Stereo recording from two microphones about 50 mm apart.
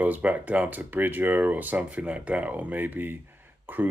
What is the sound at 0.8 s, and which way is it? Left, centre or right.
Speech, right.